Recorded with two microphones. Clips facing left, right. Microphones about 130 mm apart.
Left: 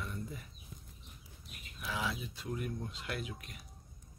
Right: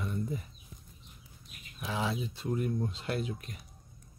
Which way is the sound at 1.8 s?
25° right (ahead or behind).